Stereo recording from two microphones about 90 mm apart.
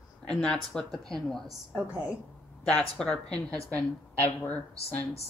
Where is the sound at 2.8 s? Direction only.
10° left (ahead or behind).